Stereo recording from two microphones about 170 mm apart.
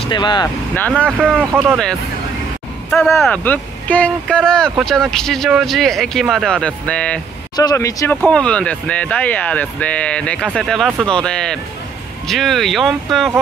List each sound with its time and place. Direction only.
0.0 s speech: 25° left (ahead or behind)
0.7 s speech: 10° left (ahead or behind)
1.0 s speech: 10° right (ahead or behind)
2.9 s speech: centre (ahead or behind)
7.5 s speech: 20° left (ahead or behind)
8.2 s speech: 5° left (ahead or behind)